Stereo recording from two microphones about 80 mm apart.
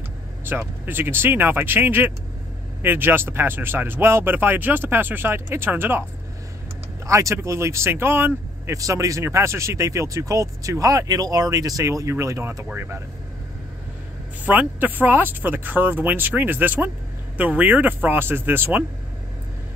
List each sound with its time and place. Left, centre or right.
0.5 s speech: right
7.1 s speech: right
8.7 s speech: right
14.4 s speech: right